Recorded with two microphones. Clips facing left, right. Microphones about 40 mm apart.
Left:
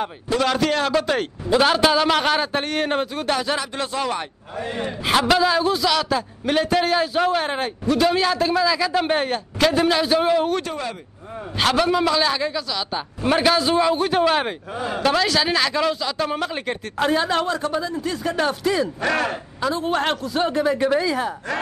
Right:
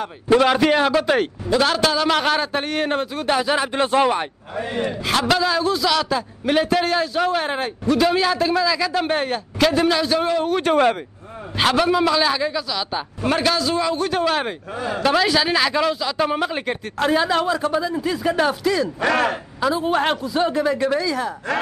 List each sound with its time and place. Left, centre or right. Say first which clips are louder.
0.4 s a man's voice: right 2 dB; centre
1.5 s a man's voice: left 2 dB; centre
2.0 s a man's voice: even; centre
3.5 s speech: right 7 dB; right
4.1 s a man's voice: right 4 dB; centre
5.0 s a man's voice: left 3 dB; centre
10.6 s speech: right 11 dB; right
11.5 s a man's voice: right 1 dB; centre
13.3 s a man's voice: left 2 dB; centre
13.6 s a man's voice: left 2 dB; left; by 20.3 s centre
20.3 s a man's voice: even; centre
21.0 s a woman's voice: left 1 dB; left